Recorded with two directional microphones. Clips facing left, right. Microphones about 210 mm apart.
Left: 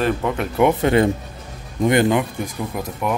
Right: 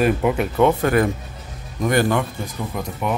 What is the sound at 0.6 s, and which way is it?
Speech, 20° left (ahead or behind).